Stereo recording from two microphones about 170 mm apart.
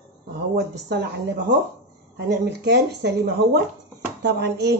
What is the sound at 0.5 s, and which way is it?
Speech, 75° right (ahead or behind).